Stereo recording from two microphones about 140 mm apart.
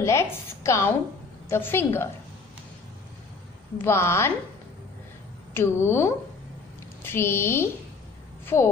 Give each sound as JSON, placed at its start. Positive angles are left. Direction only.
{"t": 0.0, "sound": "a sound", "side_deg": 20}
{"t": 1.5, "sound": "speech", "side_deg": 15}
{"t": 3.7, "sound": "a woman's voice", "side_deg": 20}
{"t": 5.5, "sound": "a woman's voice", "side_deg": 20}